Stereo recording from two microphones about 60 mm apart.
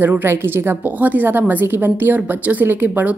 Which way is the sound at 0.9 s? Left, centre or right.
Right.